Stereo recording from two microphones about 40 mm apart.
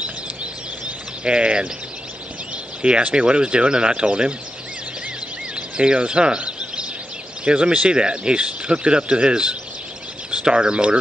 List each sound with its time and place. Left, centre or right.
0.4 s a sound: right
2.5 s speech: right
5.8 s speech: right